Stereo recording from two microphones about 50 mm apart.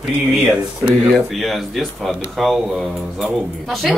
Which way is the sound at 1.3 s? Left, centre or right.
Centre.